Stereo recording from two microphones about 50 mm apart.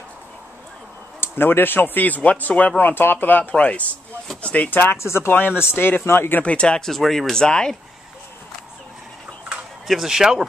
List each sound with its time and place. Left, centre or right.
1.2 s speech: left
4.6 s speech: left
4.9 s speech: left
5.7 s speech: left
6.4 s speech: left
6.8 s speech: centre
7.4 s speech: centre
9.8 s speech: centre